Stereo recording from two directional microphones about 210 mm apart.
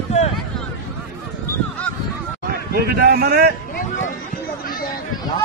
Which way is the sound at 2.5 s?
45° right (ahead or behind).